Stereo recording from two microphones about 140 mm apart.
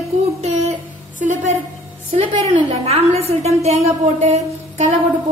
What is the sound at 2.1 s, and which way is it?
A woman's voice, 45° right (ahead or behind).